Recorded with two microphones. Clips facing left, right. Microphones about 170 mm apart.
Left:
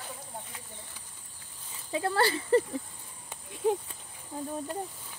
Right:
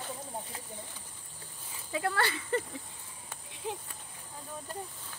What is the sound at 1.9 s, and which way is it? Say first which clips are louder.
Speech: left 4 dB; 30° left (ahead or behind).